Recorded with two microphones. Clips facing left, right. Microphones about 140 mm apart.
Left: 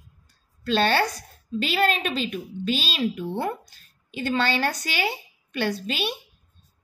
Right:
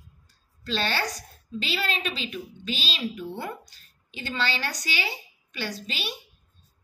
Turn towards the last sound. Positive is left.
turn(degrees=55)  # may be behind; listen again after turning